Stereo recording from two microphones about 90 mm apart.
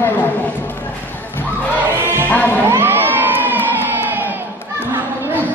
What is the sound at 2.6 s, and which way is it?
Crowd, 25° right (ahead or behind).